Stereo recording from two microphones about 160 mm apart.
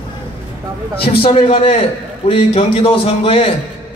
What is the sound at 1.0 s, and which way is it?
A man's voice, 35° left (ahead or behind).